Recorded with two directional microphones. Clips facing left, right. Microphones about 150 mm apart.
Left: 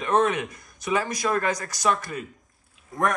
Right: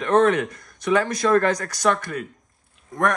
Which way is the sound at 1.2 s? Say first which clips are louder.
Right 9 dB; 55° right (ahead or behind).